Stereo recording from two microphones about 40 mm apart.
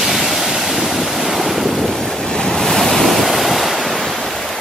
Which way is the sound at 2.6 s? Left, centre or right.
Centre.